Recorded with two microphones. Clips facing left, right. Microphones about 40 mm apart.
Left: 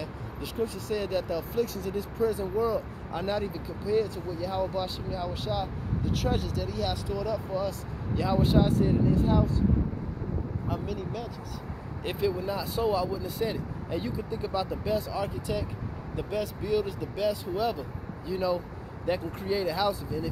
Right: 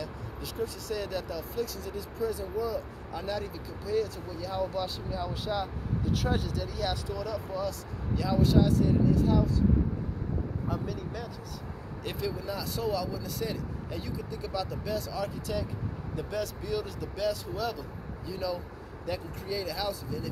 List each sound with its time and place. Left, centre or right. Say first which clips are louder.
0.0 s speech: left 2 dB; left
3.3 s speech: left 4 dB; left
8.2 s speech: left 1 dB; left
10.7 s speech: left 4 dB; centre
12.0 s speech: left 6 dB; left